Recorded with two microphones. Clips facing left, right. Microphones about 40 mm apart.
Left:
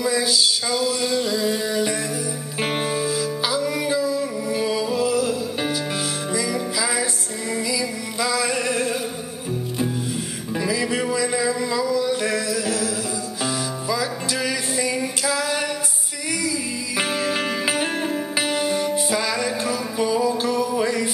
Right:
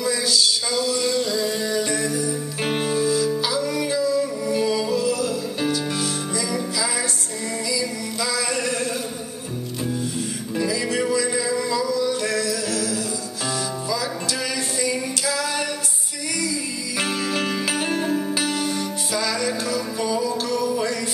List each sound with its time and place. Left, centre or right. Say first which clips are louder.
0.0 s music: left 1 dB; centre
10.5 s music: left 1 dB; centre
14.4 s music: left 2 dB; centre